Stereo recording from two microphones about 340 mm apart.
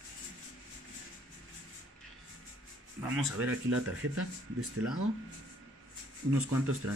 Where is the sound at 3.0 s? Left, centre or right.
Centre.